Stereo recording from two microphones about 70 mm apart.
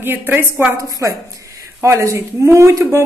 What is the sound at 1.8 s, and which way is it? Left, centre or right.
Speech, right.